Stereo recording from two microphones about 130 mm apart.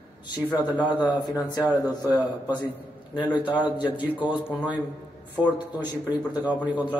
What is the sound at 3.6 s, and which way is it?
A man's voice, 10° right (ahead or behind).